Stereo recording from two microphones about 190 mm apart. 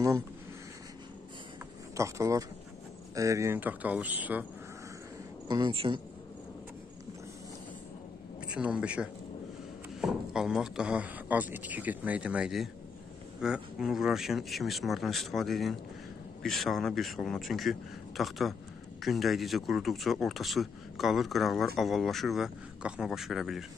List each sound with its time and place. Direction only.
2.0 s speech: 15° right (ahead or behind)
5.5 s speech: 25° right (ahead or behind)
8.5 s speech: 5° right (ahead or behind)